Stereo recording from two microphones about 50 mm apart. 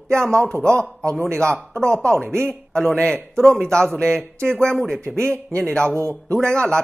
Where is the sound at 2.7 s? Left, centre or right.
Centre.